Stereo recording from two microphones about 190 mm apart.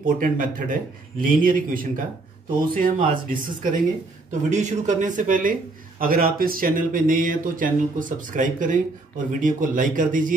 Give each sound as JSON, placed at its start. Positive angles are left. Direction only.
{"t": 0.0, "sound": "a man's voice", "side_deg": -45}